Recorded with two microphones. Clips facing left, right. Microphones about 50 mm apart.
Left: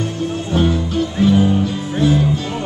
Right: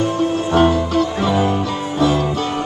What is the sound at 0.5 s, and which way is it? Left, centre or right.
Music, right.